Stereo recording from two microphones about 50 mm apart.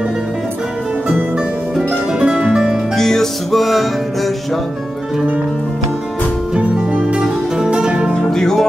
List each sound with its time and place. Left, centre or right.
1.9 s music: centre
3.0 s music: centre
6.5 s music: right
8.3 s music: centre